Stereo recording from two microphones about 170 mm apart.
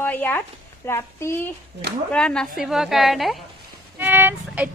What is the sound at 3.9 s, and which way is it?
Speech, 10° right (ahead or behind).